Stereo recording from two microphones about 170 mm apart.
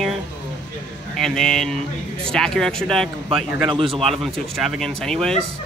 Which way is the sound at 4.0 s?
Centre (ahead or behind).